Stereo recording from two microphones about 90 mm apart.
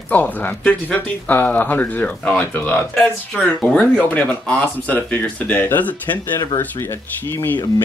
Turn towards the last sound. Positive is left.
turn(degrees=25)  # may be behind; listen again after turning